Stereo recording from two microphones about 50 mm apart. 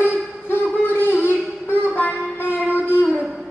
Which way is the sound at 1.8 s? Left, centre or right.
Left.